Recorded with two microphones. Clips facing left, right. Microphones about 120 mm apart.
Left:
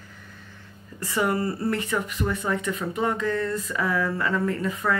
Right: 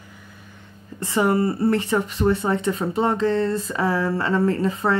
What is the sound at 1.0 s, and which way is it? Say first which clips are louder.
Speech: right 5 dB; 25° right (ahead or behind).